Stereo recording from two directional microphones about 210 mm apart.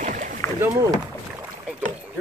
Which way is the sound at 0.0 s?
35° right (ahead or behind).